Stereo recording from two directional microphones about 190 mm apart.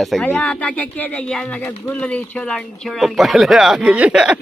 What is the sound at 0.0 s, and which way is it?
Speech, centre (ahead or behind).